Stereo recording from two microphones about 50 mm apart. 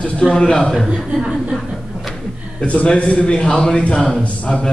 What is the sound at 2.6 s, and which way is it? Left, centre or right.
A man's voice, left.